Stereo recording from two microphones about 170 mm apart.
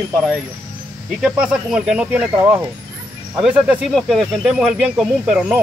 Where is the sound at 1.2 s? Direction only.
5° right (ahead or behind).